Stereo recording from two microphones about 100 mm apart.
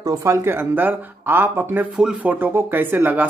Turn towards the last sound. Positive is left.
turn(degrees=-20)  # may be behind; listen again after turning